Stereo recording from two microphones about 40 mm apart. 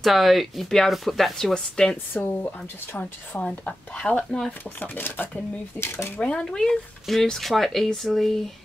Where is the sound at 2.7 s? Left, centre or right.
Left.